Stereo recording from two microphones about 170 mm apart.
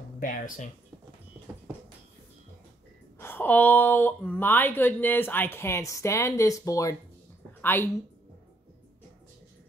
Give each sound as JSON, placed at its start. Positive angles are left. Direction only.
{"t": 0.2, "sound": "speech", "side_deg": 50}
{"t": 3.2, "sound": "speech", "side_deg": 10}